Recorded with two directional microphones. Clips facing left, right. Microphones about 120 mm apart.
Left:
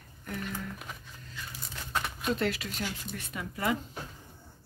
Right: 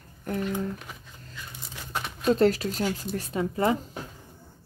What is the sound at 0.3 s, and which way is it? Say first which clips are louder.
Speech: right 9 dB; 35° right (ahead or behind).